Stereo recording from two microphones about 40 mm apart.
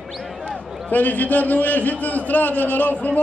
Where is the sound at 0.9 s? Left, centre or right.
Left.